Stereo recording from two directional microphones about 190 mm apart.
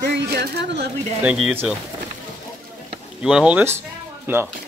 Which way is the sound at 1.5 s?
10° right (ahead or behind).